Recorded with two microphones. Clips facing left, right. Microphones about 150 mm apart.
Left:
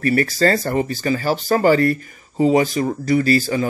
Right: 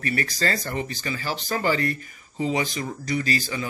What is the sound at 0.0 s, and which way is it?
Speech, 40° left (ahead or behind).